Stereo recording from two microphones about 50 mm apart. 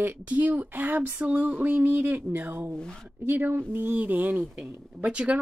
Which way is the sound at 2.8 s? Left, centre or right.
Centre.